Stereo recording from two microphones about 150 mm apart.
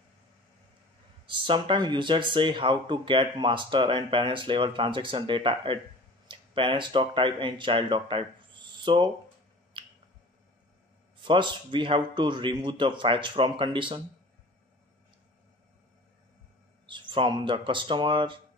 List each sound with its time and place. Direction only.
1.2 s speech: 35° right (ahead or behind)
9.8 s finger snapping: 35° right (ahead or behind)
11.1 s speech: 30° right (ahead or behind)
16.8 s speech: 35° right (ahead or behind)